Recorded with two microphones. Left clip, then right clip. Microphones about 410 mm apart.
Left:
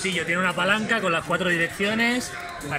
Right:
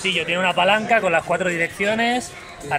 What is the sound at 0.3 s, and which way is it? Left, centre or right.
Speech, centre.